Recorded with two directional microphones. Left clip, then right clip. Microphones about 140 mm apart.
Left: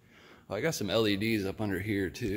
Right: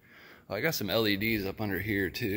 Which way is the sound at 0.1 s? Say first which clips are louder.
Right 1 dB; 10° left (ahead or behind).